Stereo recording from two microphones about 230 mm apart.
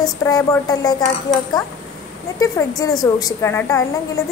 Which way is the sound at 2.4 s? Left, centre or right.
Centre.